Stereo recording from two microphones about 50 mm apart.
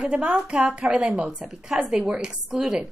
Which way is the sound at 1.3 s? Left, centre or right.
Centre.